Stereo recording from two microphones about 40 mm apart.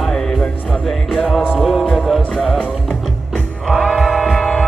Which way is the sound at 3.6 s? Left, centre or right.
Centre.